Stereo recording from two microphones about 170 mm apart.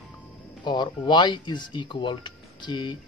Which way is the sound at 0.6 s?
25° left (ahead or behind).